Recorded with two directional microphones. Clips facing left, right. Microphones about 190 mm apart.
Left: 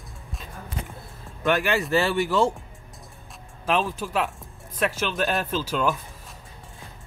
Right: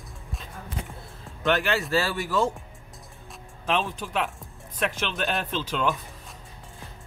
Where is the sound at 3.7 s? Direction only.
5° left (ahead or behind).